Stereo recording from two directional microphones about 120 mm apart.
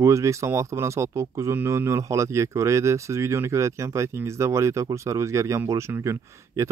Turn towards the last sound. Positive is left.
turn(degrees=-25)  # may be behind; listen again after turning